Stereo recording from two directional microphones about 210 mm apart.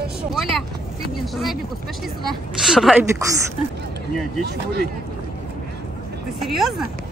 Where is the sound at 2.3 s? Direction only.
Centre (ahead or behind).